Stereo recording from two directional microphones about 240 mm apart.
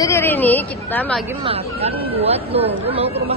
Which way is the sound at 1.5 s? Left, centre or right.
Right.